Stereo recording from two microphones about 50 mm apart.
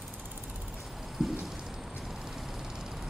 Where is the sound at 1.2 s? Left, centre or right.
Centre.